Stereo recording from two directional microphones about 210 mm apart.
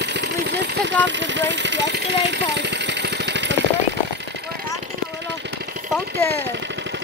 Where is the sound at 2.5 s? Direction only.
55° right (ahead or behind).